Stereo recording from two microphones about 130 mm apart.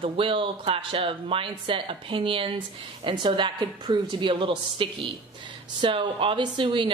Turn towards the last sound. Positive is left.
turn(degrees=-35)  # may be behind; listen again after turning